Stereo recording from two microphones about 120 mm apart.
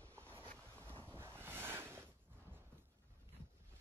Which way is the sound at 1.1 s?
20° right (ahead or behind).